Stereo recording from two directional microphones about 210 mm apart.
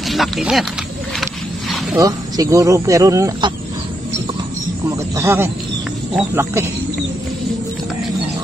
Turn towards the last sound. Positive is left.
turn(degrees=-15)  # may be behind; listen again after turning